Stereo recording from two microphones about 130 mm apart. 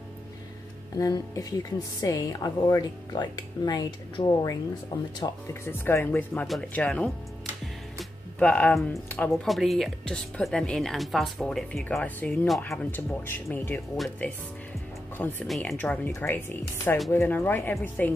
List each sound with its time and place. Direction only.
0.9 s a woman's voice: 25° left (ahead or behind)
5.5 s speech: 20° left (ahead or behind)
7.6 s music: 5° left (ahead or behind)
9.3 s speech: centre (ahead or behind)
12.7 s speech: 15° left (ahead or behind)
13.9 s speech: centre (ahead or behind)
15.1 s speech: 15° left (ahead or behind)
15.4 s speech: centre (ahead or behind)
15.8 s speech: 10° left (ahead or behind)